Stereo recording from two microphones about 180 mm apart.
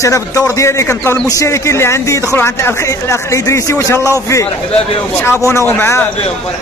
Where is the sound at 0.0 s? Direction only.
15° left (ahead or behind).